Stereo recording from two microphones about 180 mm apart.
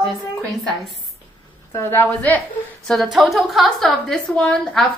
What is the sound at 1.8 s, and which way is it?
Speech, 10° left (ahead or behind).